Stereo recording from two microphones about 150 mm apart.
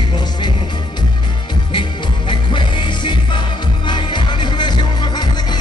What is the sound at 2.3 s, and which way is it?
Music, 30° left (ahead or behind).